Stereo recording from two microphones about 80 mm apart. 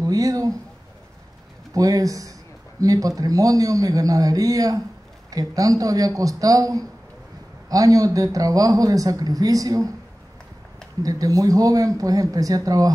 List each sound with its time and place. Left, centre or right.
0.0 s speech: right
1.7 s speech: right
11.0 s speech: right